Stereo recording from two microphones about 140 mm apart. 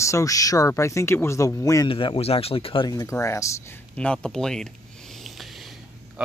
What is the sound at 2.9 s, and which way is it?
Speech, 20° left (ahead or behind).